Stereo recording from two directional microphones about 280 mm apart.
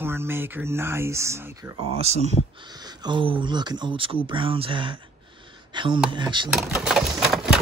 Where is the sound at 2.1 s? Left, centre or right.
Right.